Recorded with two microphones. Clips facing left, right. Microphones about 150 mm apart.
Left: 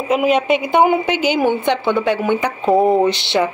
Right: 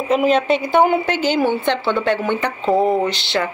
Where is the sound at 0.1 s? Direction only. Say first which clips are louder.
Left 1 dB; 10° left (ahead or behind).